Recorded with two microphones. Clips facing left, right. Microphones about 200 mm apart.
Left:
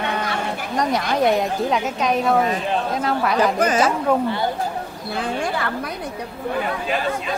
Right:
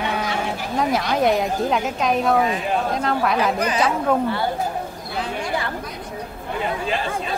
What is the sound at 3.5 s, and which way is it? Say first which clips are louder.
Speech: left 3 dB; 45° left (ahead or behind).